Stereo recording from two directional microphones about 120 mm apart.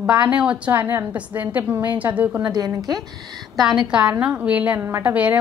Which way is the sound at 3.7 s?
5° right (ahead or behind).